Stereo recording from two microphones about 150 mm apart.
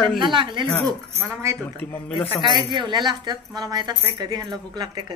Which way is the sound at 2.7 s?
30° right (ahead or behind).